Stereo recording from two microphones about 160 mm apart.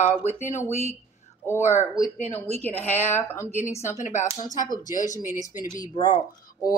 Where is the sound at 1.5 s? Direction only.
45° left (ahead or behind).